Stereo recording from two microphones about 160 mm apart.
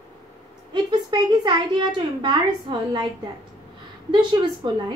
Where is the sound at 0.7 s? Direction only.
30° right (ahead or behind).